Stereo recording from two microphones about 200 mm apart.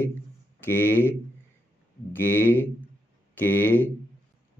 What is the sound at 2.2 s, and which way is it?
Speech, 10° left (ahead or behind).